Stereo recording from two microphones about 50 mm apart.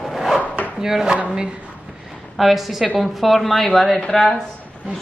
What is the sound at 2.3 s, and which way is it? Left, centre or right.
A woman's voice, centre.